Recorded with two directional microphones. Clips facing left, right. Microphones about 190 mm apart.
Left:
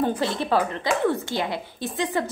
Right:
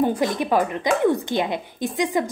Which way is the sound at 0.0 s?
15° right (ahead or behind).